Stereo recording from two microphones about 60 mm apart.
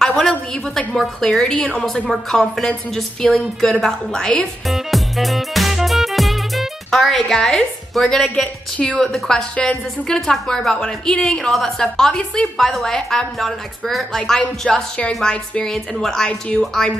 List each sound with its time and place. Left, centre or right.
0.0 s a woman's voice: centre
2.0 s a woman's voice: centre
4.6 s music: centre
8.7 s a woman's voice: centre